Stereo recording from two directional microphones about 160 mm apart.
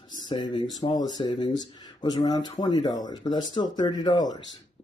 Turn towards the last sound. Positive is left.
turn(degrees=25)  # may be behind; listen again after turning